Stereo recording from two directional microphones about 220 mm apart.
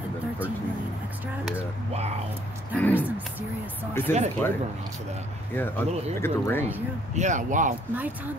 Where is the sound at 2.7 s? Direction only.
5° left (ahead or behind).